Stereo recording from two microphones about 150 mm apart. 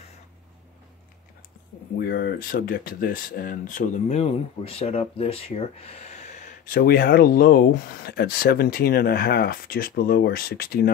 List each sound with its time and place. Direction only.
2.0 s speech: 90° left